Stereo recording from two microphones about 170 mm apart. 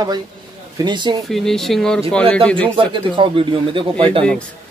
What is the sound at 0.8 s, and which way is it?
Speech, 25° right (ahead or behind).